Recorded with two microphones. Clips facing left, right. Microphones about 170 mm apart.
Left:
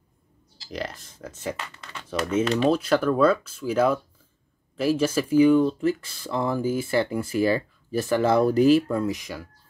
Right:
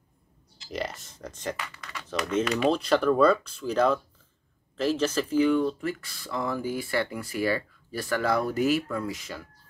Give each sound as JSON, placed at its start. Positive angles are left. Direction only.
{"t": 0.7, "sound": "speech", "side_deg": 0}
{"t": 1.6, "sound": "speech", "side_deg": 25}
{"t": 2.0, "sound": "speech", "side_deg": 10}